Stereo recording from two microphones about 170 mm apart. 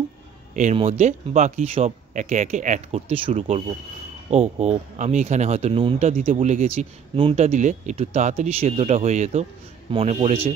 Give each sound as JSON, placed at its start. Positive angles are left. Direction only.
{"t": 0.7, "sound": "speech", "side_deg": -35}